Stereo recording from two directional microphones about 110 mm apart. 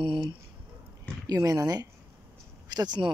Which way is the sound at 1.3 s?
35° right (ahead or behind).